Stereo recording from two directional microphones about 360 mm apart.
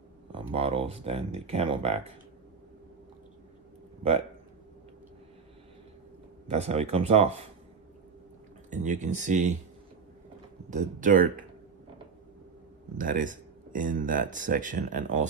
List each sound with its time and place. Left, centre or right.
0.3 s speech: centre
6.4 s speech: centre
8.6 s speech: centre
10.7 s speech: right
12.9 s speech: right